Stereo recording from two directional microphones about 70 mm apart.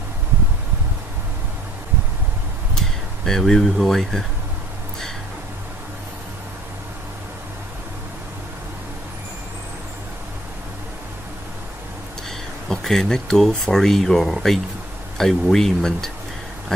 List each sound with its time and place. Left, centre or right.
3.3 s speech: centre
12.6 s speech: centre